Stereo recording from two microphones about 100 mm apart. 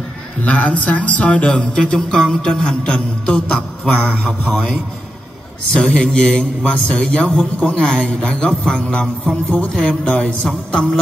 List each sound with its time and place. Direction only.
0.4 s music: 15° left (ahead or behind)
5.8 s music: 10° left (ahead or behind)
9.0 s speech: centre (ahead or behind)
9.5 s music: 10° left (ahead or behind)